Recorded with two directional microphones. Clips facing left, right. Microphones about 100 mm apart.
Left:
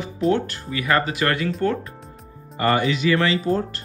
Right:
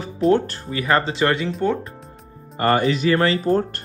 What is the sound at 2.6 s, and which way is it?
Speech, 40° right (ahead or behind).